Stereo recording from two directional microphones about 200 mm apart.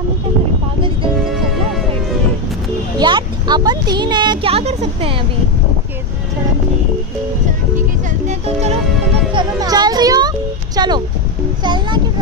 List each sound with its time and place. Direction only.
1.2 s music: centre (ahead or behind)
3.0 s speech: 20° right (ahead or behind)
8.3 s music: 30° right (ahead or behind)
9.3 s music: 20° right (ahead or behind)
10.8 s a sound: 20° right (ahead or behind)